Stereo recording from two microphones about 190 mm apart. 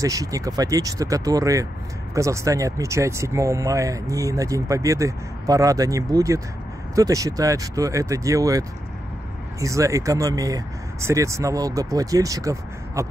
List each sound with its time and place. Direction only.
0.0 s speech: 15° right (ahead or behind)